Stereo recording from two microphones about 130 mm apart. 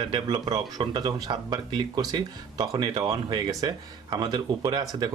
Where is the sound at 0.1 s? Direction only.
35° right (ahead or behind).